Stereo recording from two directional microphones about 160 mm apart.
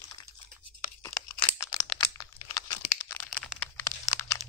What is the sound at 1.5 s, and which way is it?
Crumpling, 5° right (ahead or behind).